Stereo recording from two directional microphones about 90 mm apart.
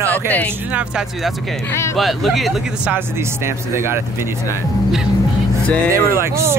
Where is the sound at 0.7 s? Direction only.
5° right (ahead or behind).